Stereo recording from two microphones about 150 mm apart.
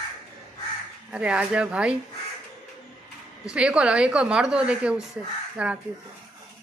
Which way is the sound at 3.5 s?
5° right (ahead or behind).